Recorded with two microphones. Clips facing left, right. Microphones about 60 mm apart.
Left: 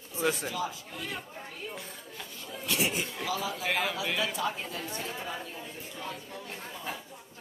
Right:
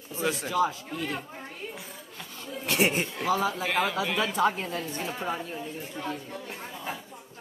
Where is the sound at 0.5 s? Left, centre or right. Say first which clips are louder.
Right 8 dB; right.